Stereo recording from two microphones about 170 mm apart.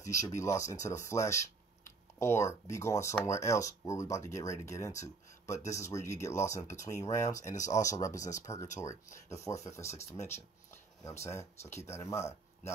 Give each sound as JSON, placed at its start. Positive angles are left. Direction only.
{"t": 0.0, "sound": "speech", "side_deg": 20}
{"t": 7.3, "sound": "speech", "side_deg": 45}
{"t": 7.6, "sound": "speech", "side_deg": 20}
{"t": 10.1, "sound": "a sound", "side_deg": 15}
{"t": 11.3, "sound": "speech", "side_deg": 15}